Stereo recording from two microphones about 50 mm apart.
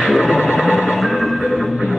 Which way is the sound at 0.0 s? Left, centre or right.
Centre.